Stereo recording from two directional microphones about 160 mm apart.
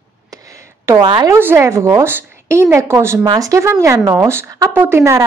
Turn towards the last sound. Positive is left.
turn(degrees=-15)  # may be behind; listen again after turning